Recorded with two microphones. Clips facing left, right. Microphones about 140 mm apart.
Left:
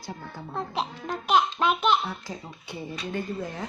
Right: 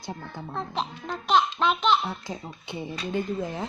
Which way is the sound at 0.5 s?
10° left (ahead or behind).